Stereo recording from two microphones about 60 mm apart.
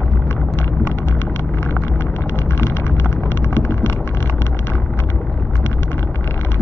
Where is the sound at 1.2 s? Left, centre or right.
Left.